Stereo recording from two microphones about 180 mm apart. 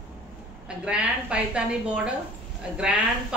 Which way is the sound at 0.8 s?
5° right (ahead or behind).